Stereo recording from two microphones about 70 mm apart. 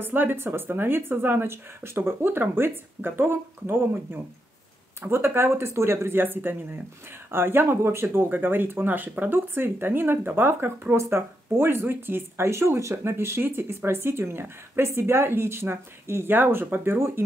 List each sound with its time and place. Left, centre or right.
0.0 s speech: right